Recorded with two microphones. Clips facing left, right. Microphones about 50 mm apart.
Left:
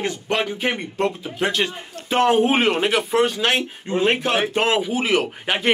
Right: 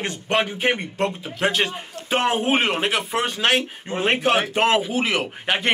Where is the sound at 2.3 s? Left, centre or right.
Centre.